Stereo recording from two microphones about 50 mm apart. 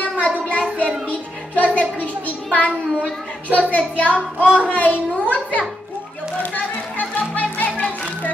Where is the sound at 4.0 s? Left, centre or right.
Left.